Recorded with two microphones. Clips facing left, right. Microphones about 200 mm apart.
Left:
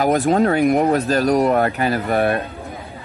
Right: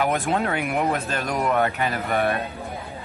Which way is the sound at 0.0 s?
40° left (ahead or behind).